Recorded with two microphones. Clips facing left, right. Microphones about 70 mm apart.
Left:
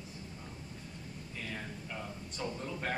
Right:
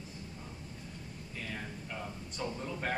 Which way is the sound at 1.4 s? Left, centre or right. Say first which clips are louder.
Right 1 dB; centre.